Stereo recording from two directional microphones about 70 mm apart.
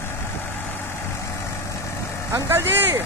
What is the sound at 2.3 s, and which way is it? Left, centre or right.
Speech, right.